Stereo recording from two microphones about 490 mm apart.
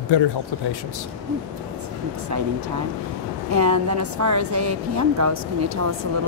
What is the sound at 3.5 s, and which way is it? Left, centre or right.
A woman's voice, right.